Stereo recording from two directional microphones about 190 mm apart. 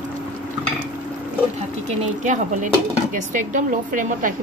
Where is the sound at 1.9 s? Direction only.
40° right (ahead or behind).